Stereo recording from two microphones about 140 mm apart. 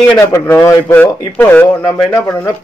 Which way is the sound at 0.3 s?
20° left (ahead or behind).